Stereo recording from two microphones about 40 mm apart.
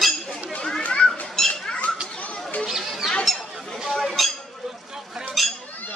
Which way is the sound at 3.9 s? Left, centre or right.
Centre.